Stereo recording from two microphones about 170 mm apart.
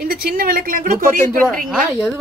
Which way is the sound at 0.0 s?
65° right (ahead or behind).